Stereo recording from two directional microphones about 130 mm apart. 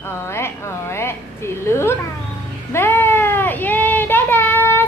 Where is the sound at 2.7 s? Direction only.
15° left (ahead or behind).